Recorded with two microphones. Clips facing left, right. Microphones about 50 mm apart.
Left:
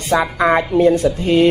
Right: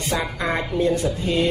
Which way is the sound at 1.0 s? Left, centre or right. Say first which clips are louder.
Left 8 dB; left.